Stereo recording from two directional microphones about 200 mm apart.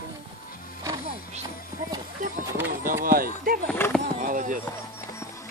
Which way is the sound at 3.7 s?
10° left (ahead or behind).